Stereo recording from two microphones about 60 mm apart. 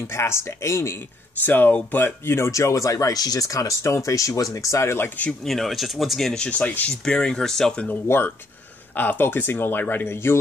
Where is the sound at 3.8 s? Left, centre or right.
Left.